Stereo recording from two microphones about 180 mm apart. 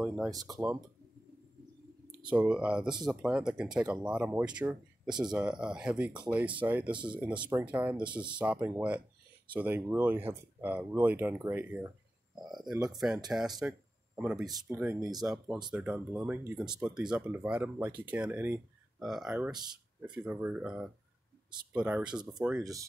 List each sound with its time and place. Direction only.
0.0 s speech: 5° right (ahead or behind)
2.2 s speech: 5° right (ahead or behind)
6.9 s speech: 25° right (ahead or behind)
7.2 s speech: 5° right (ahead or behind)
12.9 s speech: centre (ahead or behind)
13.6 s a sound: 5° right (ahead or behind)
14.7 s speech: 15° right (ahead or behind)
15.2 s speech: centre (ahead or behind)